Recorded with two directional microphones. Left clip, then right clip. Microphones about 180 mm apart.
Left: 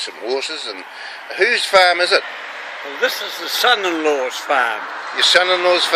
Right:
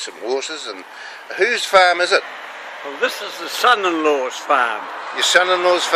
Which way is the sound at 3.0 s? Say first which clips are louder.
Left 2 dB; 45° right (ahead or behind).